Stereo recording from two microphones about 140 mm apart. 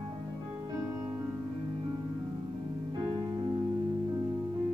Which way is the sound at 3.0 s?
30° right (ahead or behind).